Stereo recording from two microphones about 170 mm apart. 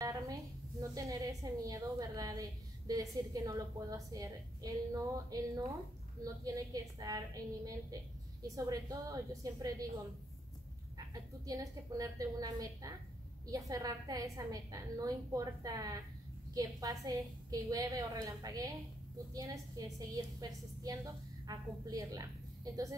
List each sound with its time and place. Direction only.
0.0 s a sound: 20° right (ahead or behind)
2.9 s a woman's voice: 20° right (ahead or behind)
11.4 s a woman's voice: 20° right (ahead or behind)